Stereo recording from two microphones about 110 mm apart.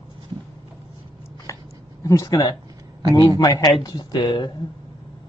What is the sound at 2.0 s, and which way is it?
A man's voice, 30° left (ahead or behind).